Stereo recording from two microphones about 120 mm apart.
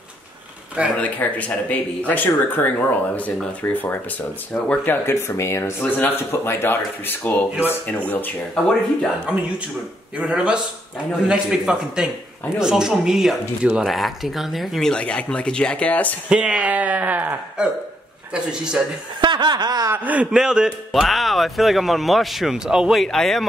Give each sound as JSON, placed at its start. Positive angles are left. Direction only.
{"t": 0.9, "sound": "speech", "side_deg": 10}
{"t": 10.1, "sound": "a man's voice", "side_deg": -10}
{"t": 16.3, "sound": "speech", "side_deg": -10}
{"t": 19.2, "sound": "a sound", "side_deg": -40}
{"t": 19.9, "sound": "a man's voice", "side_deg": -10}